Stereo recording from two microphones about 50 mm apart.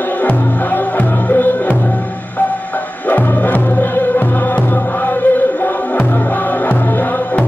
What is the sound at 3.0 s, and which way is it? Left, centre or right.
Music, left.